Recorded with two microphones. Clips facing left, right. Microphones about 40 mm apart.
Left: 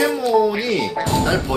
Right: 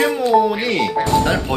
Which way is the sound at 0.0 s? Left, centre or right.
Right.